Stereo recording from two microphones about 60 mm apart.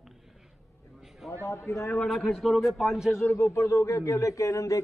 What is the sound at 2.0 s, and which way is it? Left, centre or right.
A man's voice, centre.